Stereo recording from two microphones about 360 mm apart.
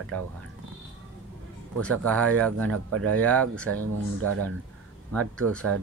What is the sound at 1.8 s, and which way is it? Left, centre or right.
Speech, centre.